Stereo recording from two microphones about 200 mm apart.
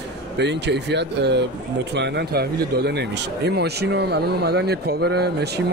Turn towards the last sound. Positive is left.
turn(degrees=-55)  # may be behind; listen again after turning